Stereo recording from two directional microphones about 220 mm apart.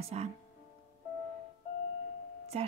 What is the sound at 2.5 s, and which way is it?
Speech, 25° right (ahead or behind).